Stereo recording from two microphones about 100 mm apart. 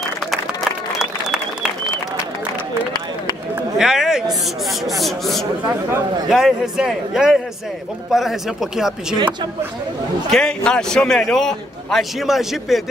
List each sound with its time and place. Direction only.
0.9 s applause: 5° right (ahead or behind)
3.7 s a sound: 5° right (ahead or behind)
4.8 s a man's voice: centre (ahead or behind)
9.1 s speech: 50° right (ahead or behind)
10.3 s a man's voice: 10° left (ahead or behind)